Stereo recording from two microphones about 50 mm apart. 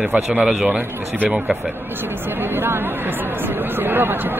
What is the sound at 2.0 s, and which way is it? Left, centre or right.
Speech, right.